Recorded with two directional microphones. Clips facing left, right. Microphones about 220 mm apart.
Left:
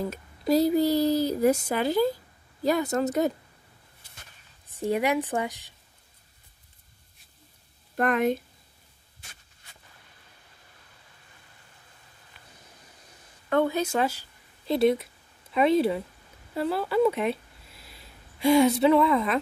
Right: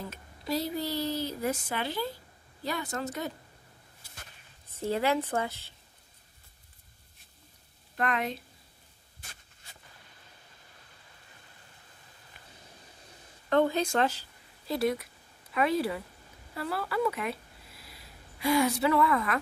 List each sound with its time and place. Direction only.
0.1 s a woman's voice: 40° left (ahead or behind)
4.6 s speech: 15° left (ahead or behind)
7.9 s speech: 50° left (ahead or behind)
13.5 s speech: 10° left (ahead or behind)
14.7 s speech: 25° left (ahead or behind)
18.4 s speech: 25° left (ahead or behind)